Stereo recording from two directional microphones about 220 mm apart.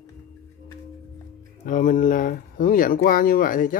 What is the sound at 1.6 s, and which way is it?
Speech, 35° left (ahead or behind).